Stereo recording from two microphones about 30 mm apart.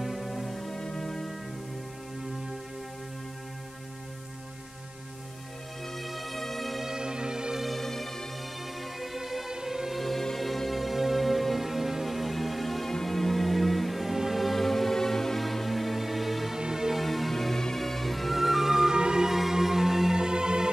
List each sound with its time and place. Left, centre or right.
0.0 s music: centre
0.7 s music: centre
5.9 s bagpipes: centre
7.0 s music: right
7.6 s music: centre
9.0 s music: centre
9.5 s music: centre
9.9 s music: centre
15.4 s music: centre
16.5 s music: centre
16.9 s music: centre
18.9 s music: right
19.2 s music: centre
20.2 s music: right